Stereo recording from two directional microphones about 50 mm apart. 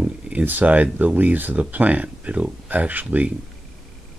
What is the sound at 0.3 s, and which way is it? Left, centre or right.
Speech, right.